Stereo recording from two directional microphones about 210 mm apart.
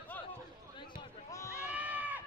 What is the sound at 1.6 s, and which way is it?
Goat, 5° right (ahead or behind).